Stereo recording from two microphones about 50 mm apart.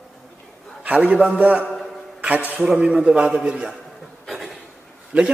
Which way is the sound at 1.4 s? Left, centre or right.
Right.